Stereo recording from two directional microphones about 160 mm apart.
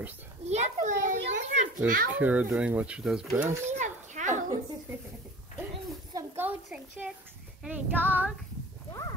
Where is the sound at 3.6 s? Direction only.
50° right (ahead or behind).